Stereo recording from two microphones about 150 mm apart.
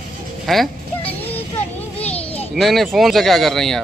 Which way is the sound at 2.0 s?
10° left (ahead or behind).